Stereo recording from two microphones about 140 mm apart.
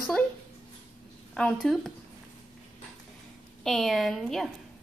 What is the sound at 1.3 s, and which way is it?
Speech, 5° left (ahead or behind).